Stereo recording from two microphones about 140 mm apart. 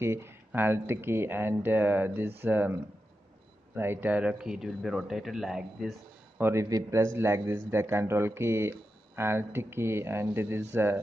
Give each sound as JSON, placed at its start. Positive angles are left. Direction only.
{"t": 0.0, "sound": "speech", "side_deg": -20}
{"t": 6.4, "sound": "speech", "side_deg": -20}